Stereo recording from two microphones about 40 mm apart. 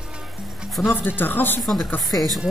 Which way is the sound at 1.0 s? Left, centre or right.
Left.